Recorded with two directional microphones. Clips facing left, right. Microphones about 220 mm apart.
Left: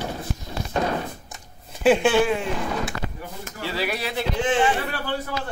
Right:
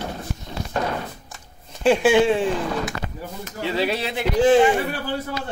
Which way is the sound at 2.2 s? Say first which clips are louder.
Right 5 dB; 30° right (ahead or behind).